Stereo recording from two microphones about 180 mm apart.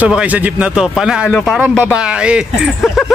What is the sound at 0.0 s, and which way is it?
Speech, 5° right (ahead or behind).